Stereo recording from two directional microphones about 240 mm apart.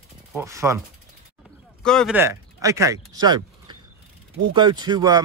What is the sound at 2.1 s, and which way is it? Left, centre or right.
Speech, centre.